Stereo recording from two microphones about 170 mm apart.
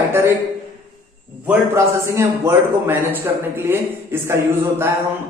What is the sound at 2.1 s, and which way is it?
A man's voice, 15° right (ahead or behind).